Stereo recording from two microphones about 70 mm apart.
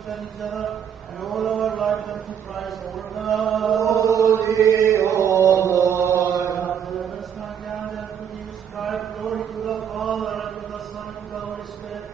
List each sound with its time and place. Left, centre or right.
0.1 s a man's voice: centre
4.0 s chant: right
8.7 s mantra: centre